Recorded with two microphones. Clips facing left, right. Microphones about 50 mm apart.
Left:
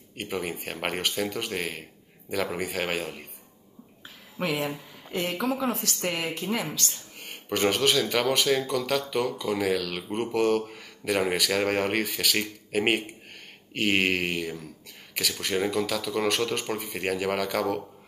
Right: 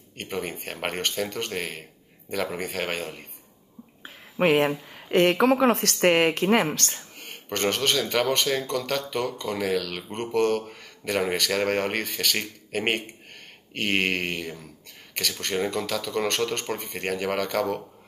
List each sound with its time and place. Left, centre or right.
0.2 s speech: centre
4.4 s speech: right
7.2 s speech: centre